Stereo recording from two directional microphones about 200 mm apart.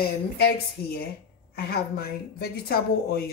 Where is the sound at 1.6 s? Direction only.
50° left (ahead or behind).